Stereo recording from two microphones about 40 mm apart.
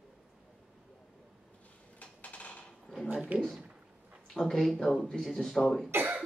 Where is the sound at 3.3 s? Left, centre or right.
Right.